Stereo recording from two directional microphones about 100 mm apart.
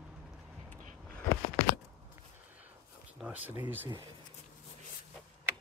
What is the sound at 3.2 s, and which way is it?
Speech, 15° right (ahead or behind).